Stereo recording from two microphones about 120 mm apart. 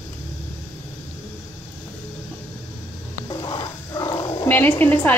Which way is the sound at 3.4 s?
35° left (ahead or behind).